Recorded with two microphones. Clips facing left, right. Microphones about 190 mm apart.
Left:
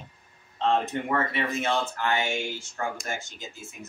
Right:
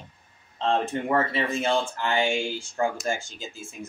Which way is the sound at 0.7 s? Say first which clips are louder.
Right 1 dB; 30° right (ahead or behind).